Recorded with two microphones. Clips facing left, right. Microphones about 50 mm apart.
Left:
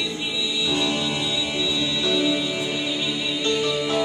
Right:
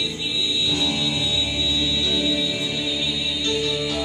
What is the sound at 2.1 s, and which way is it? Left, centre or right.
Music, left.